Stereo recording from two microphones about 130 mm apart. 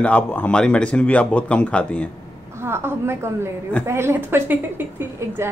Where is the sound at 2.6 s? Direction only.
20° right (ahead or behind).